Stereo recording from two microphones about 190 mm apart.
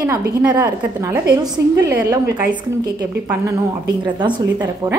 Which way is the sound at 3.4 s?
25° right (ahead or behind).